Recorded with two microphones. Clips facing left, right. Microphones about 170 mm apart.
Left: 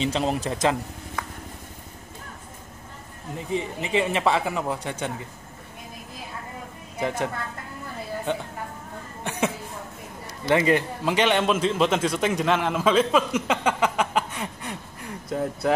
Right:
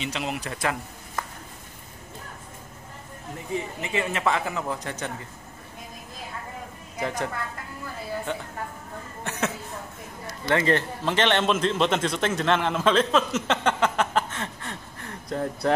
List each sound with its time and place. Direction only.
0.0 s speech: 35° left (ahead or behind)
3.3 s a man's voice: 20° left (ahead or behind)
7.0 s a woman's voice: 10° left (ahead or behind)
10.5 s a man's voice: 10° left (ahead or behind)